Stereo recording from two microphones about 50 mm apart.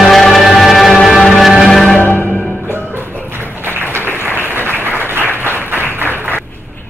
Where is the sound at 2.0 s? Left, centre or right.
Left.